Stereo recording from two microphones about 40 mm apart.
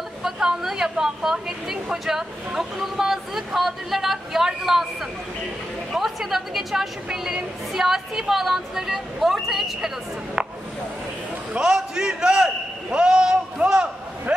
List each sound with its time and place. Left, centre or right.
0.2 s a woman's voice: centre
5.9 s a woman's voice: centre
10.4 s a sound: right
13.6 s a man's voice: right